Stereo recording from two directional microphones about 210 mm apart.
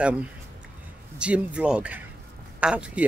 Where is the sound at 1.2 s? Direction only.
5° right (ahead or behind).